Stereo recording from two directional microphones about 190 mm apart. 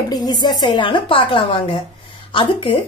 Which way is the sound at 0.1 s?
20° left (ahead or behind).